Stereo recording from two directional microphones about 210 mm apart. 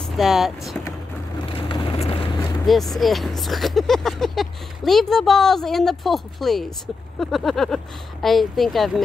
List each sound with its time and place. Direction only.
0.0 s speech: centre (ahead or behind)
1.5 s vehicle: 25° left (ahead or behind)
2.6 s speech: centre (ahead or behind)